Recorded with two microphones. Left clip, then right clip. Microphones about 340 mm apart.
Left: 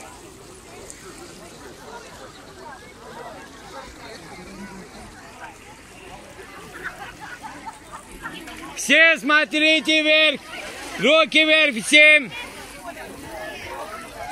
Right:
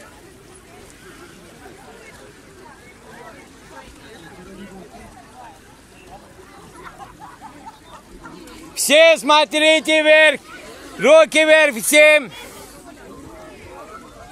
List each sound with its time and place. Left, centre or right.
8.7 s a man's voice: centre